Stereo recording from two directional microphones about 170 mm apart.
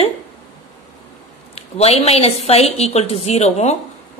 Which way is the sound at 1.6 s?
35° left (ahead or behind).